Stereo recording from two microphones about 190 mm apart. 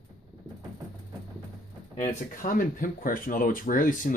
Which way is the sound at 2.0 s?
45° left (ahead or behind).